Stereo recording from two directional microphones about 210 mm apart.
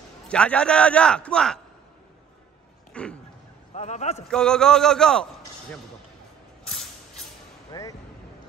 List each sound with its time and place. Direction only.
0.3 s a man's voice: 5° left (ahead or behind)
2.9 s dog: 5° left (ahead or behind)
3.7 s a man's voice: 35° left (ahead or behind)
4.3 s a man's voice: 5° left (ahead or behind)
6.7 s mechanisms: centre (ahead or behind)
7.7 s speech: 20° left (ahead or behind)